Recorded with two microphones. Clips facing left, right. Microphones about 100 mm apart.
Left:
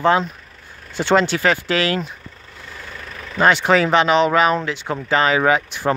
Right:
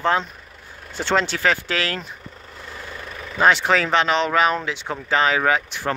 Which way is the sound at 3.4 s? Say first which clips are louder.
Left 2 dB; 5° left (ahead or behind).